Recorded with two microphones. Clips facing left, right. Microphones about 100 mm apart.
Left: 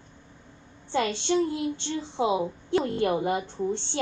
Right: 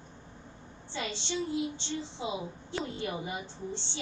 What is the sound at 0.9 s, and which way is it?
A woman's voice, 55° left (ahead or behind).